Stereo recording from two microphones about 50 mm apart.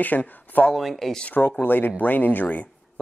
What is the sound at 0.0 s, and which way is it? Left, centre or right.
Speech, left.